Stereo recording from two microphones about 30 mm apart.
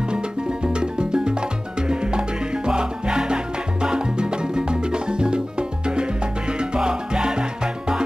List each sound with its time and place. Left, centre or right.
0.1 s music: right